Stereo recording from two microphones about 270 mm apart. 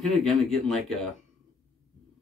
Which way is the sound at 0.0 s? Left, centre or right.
Centre.